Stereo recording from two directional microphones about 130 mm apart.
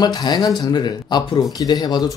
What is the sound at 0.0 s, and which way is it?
Speech, 30° left (ahead or behind).